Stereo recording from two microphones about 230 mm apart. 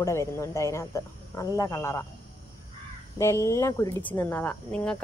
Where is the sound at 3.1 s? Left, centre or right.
Centre.